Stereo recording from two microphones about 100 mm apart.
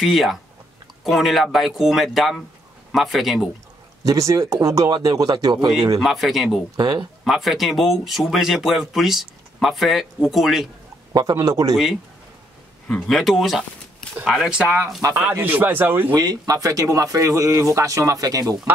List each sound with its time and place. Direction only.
0.0 s speech: centre (ahead or behind)
4.0 s speech: 35° right (ahead or behind)
5.9 s speech: centre (ahead or behind)
6.8 s speech: 45° right (ahead or behind)
7.2 s speech: centre (ahead or behind)
11.1 s speech: 35° right (ahead or behind)
11.7 s speech: centre (ahead or behind)
13.1 s speech: centre (ahead or behind)
15.4 s speech: 20° right (ahead or behind)
16.2 s speech: 40° right (ahead or behind)